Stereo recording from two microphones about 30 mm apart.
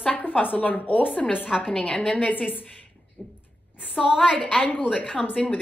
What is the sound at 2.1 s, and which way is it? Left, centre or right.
Speech, left.